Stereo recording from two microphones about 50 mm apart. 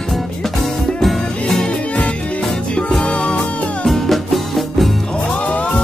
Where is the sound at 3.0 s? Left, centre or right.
Centre.